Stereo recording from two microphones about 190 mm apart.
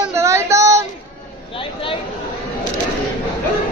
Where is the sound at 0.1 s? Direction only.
15° right (ahead or behind).